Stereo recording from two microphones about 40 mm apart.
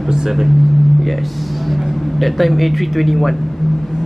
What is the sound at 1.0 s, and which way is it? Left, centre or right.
A man's voice, centre.